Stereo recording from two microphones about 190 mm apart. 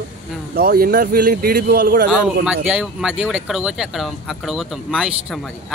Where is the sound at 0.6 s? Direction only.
50° right (ahead or behind).